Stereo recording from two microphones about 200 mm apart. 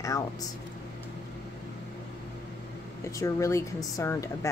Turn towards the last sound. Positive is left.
turn(degrees=15)  # may be behind; listen again after turning